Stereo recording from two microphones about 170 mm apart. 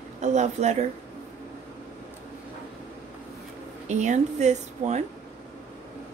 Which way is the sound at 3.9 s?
45° right (ahead or behind).